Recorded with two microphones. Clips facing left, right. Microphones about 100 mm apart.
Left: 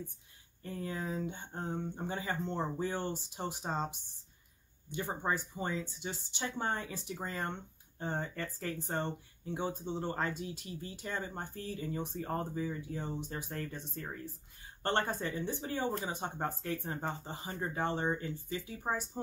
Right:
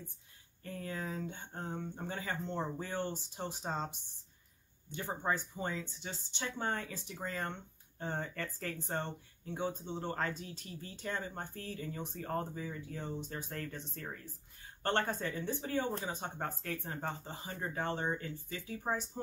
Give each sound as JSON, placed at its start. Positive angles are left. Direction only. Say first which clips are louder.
{"t": 0.8, "sound": "speech", "louder": "left 3 dB", "side_deg": 15}